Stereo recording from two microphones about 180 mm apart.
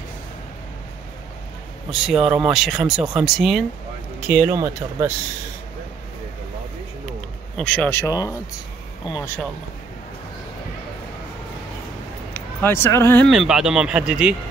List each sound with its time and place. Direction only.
1.9 s speech: 5° right (ahead or behind)
4.3 s speech: 10° right (ahead or behind)
7.5 s speech: 5° left (ahead or behind); by 9.3 s 20° left (ahead or behind)
12.4 s speech: 10° left (ahead or behind)
13.3 s speech: centre (ahead or behind)